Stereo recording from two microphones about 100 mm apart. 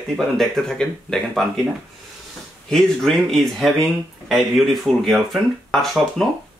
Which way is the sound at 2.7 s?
5° left (ahead or behind).